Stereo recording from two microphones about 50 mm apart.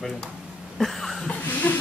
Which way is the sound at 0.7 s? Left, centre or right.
Centre.